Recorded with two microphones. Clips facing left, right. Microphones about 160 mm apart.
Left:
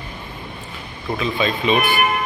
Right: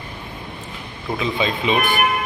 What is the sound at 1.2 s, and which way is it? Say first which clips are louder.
Speech: left 1 dB; 20° right (ahead or behind).